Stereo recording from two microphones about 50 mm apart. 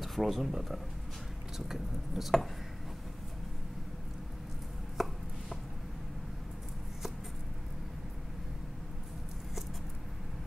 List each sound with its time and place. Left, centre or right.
0.0 s speech: centre
5.0 s chopping: centre